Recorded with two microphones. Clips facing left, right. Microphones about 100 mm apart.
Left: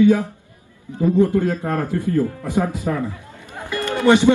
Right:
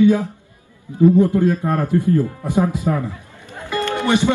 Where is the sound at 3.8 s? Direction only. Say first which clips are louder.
Left 4 dB; 20° left (ahead or behind).